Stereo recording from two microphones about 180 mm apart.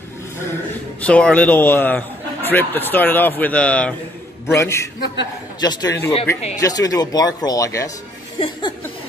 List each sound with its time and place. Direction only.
1.0 s a man's voice: 5° left (ahead or behind)
5.0 s a man's voice: 70° left (ahead or behind)
5.6 s speech: 20° left (ahead or behind)